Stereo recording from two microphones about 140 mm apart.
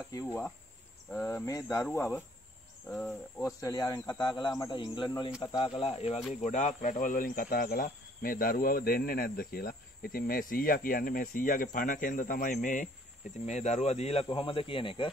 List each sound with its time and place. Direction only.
1.1 s speech: 15° left (ahead or behind)
2.0 s cricket: 15° left (ahead or behind)
2.9 s cricket: 5° left (ahead or behind)
3.4 s speech: 25° left (ahead or behind); by 6.1 s 45° left (ahead or behind)
6.4 s speech: 60° left (ahead or behind)
13.5 s speech: 55° left (ahead or behind); by 15.0 s 40° left (ahead or behind)